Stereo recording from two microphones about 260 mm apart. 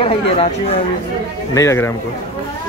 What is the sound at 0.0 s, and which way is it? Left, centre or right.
Speech, left.